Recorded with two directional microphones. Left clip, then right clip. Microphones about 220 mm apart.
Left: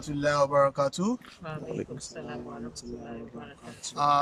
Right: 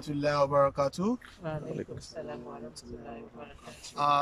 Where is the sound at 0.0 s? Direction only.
5° right (ahead or behind).